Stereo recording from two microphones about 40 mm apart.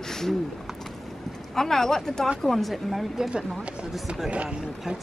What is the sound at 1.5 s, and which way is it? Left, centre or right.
Speech, centre.